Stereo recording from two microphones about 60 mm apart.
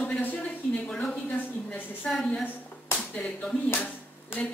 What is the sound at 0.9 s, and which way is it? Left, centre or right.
A woman's voice, centre.